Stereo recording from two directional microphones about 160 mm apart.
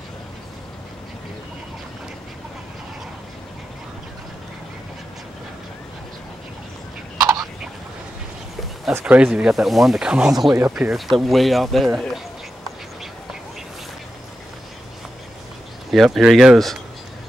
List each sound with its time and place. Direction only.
7.2 s a sound: 25° right (ahead or behind)
8.9 s speech: 10° right (ahead or behind)
15.9 s speech: centre (ahead or behind)